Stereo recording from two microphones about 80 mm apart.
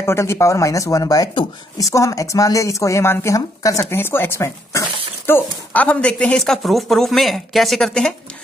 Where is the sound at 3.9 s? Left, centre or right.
Left.